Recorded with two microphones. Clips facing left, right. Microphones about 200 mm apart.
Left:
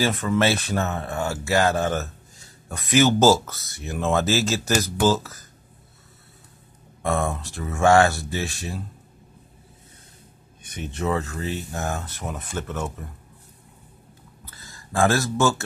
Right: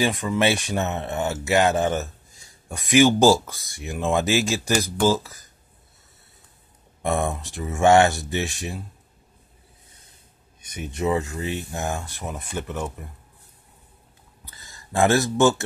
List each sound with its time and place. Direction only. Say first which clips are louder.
0.0 s speech: even; 15° right (ahead or behind)
7.0 s speech: even; 15° right (ahead or behind)
10.6 s speech: right 2 dB; 10° right (ahead or behind)
14.4 s a sound: left 1 dB; 20° right (ahead or behind)